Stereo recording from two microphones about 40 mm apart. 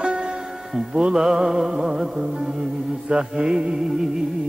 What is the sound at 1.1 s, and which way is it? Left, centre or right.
Music, centre.